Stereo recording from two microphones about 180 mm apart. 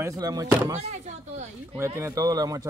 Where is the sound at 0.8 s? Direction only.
40° right (ahead or behind).